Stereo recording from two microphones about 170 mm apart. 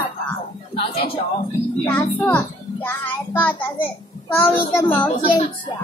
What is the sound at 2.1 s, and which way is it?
A child's voice, 10° left (ahead or behind).